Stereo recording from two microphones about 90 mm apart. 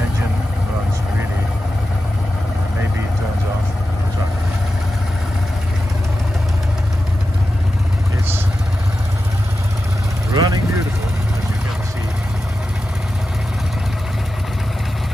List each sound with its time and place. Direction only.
10.3 s vehicle: 40° right (ahead or behind)